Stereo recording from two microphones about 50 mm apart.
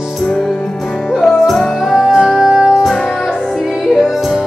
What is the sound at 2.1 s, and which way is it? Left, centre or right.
Music, centre.